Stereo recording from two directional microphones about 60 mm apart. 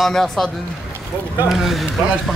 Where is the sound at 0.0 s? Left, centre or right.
Centre.